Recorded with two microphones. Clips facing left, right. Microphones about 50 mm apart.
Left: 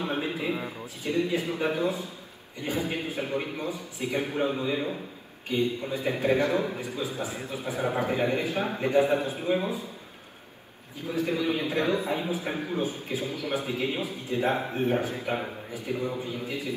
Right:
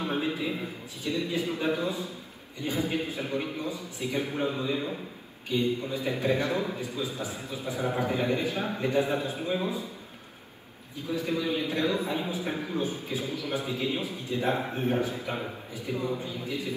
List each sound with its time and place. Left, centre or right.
0.0 s a man's voice: left
11.0 s a man's voice: left